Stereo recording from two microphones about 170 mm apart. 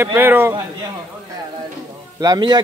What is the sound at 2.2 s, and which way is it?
Speech, 25° right (ahead or behind).